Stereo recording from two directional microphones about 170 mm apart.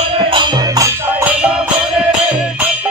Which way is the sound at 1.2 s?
5° right (ahead or behind).